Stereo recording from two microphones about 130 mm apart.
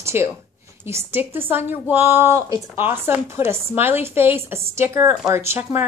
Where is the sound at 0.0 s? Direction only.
20° right (ahead or behind).